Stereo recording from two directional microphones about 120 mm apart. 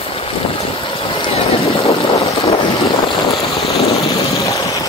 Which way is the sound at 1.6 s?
60° left (ahead or behind).